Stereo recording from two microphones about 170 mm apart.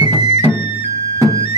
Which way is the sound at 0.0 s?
25° left (ahead or behind).